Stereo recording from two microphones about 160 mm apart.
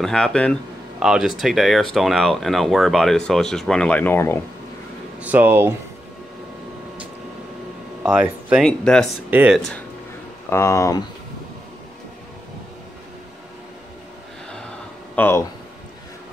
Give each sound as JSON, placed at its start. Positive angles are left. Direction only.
{"t": 0.0, "sound": "speech", "side_deg": 5}
{"t": 5.2, "sound": "speech", "side_deg": -10}
{"t": 8.0, "sound": "speech", "side_deg": -5}
{"t": 9.3, "sound": "speech", "side_deg": -10}
{"t": 10.5, "sound": "speech", "side_deg": 15}
{"t": 15.1, "sound": "speech", "side_deg": 10}